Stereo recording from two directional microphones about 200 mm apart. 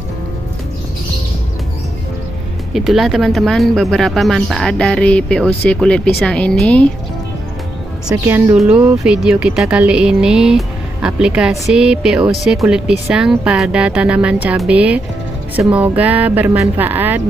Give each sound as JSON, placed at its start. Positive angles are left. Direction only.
{"t": 2.7, "sound": "speech", "side_deg": 0}
{"t": 8.1, "sound": "speech", "side_deg": -10}